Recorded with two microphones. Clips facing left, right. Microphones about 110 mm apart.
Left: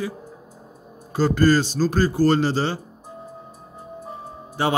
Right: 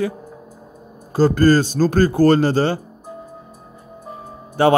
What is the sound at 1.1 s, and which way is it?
Speech, 45° right (ahead or behind).